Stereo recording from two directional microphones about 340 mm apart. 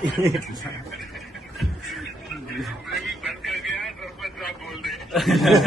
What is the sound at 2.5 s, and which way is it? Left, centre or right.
Vehicle, centre.